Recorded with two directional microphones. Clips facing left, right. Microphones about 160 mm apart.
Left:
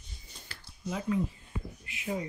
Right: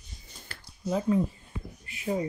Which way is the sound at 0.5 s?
55° right (ahead or behind).